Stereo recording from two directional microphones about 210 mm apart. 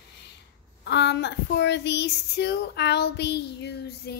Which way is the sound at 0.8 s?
55° left (ahead or behind).